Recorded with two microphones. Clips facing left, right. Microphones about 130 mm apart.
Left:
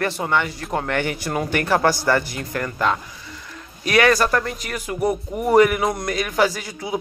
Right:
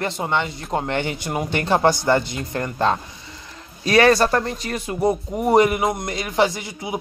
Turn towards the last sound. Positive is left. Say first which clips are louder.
# left 1 dB
turn(degrees=-20)  # may be behind; listen again after turning